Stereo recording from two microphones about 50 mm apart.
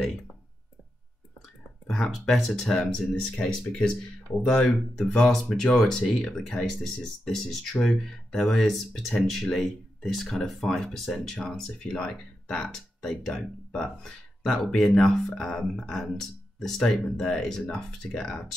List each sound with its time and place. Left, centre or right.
1.9 s speech: centre
3.3 s speech: left
4.9 s speech: centre